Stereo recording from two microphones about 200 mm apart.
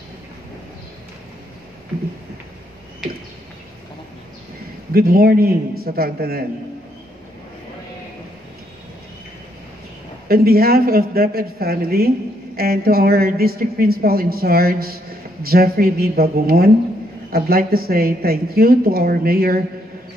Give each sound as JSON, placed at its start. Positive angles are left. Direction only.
{"t": 4.9, "sound": "a woman's voice", "side_deg": -50}
{"t": 10.2, "sound": "a woman's voice", "side_deg": -50}